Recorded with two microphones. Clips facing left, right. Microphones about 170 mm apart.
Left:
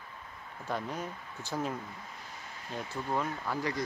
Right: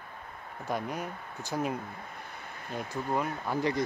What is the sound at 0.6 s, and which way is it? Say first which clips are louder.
Speech: right 2 dB; 15° right (ahead or behind).